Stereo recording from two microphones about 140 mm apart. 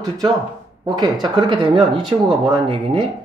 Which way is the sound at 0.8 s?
30° right (ahead or behind).